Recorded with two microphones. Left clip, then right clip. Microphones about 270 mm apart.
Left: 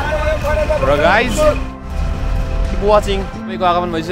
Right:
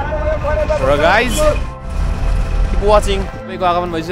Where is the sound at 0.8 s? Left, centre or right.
Centre.